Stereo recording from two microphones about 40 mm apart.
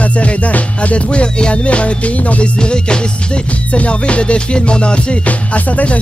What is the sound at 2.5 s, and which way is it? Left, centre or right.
Music, left.